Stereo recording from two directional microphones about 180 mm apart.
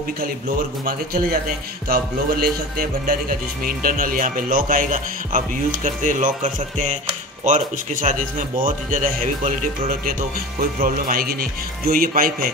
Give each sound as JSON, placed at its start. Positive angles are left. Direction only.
{"t": 0.8, "sound": "speech", "side_deg": -55}